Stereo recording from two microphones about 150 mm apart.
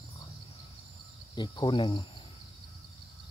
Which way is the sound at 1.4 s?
30° left (ahead or behind).